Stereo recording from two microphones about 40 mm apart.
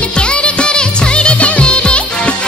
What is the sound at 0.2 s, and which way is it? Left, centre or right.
Music, left.